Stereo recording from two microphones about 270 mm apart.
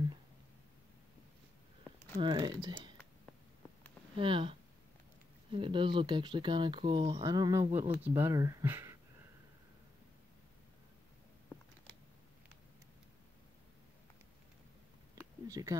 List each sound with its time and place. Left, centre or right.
2.1 s speech: centre
4.2 s speech: centre
15.4 s a sound: centre